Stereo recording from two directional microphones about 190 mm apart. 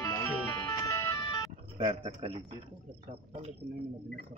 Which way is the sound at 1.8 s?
30° right (ahead or behind).